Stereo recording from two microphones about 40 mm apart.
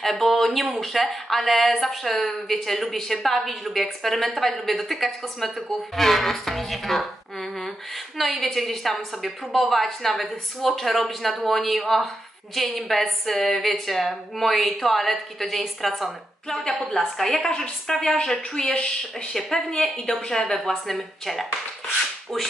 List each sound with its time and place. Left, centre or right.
0.0 s a woman's voice: centre
16.4 s a woman's voice: centre
18.0 s speech: centre
21.8 s a sound: centre